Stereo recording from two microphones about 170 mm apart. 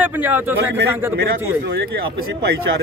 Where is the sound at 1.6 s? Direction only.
70° right (ahead or behind).